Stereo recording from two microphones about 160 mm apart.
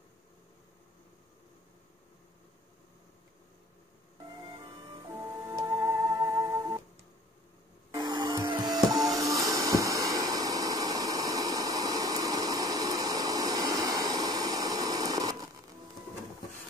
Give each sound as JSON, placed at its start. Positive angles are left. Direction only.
{"t": 5.2, "sound": "music", "side_deg": -15}
{"t": 7.9, "sound": "music", "side_deg": -25}